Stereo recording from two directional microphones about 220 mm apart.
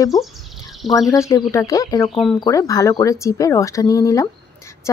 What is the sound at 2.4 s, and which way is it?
Speech, 15° left (ahead or behind).